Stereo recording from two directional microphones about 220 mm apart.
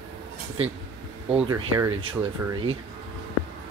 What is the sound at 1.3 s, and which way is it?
Speech, 10° right (ahead or behind).